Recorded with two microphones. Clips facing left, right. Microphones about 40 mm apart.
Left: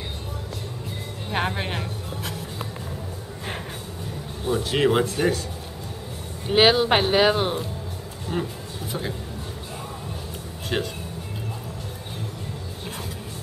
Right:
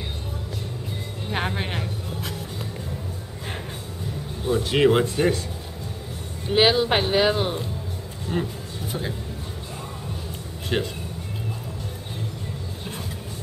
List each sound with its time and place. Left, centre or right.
1.3 s music: centre
4.5 s speech: centre
6.4 s speech: centre
8.3 s speech: centre
10.7 s speech: centre